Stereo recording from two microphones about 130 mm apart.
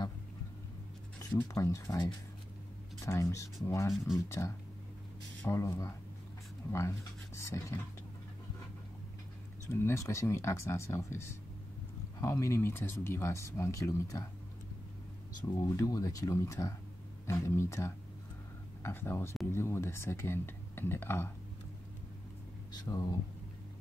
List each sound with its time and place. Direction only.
1.3 s speech: 25° left (ahead or behind)
3.9 s speech: 5° right (ahead or behind)
4.3 s speech: 20° left (ahead or behind)
9.7 s speech: 20° left (ahead or behind)
15.7 s speech: 25° left (ahead or behind)
22.7 s speech: 30° left (ahead or behind)